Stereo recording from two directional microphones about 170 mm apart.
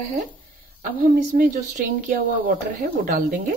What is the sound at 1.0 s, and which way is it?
A woman's voice, 50° right (ahead or behind).